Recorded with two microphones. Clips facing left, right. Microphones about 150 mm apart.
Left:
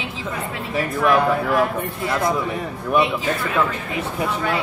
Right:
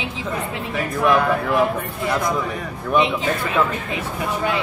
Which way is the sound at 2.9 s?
20° right (ahead or behind).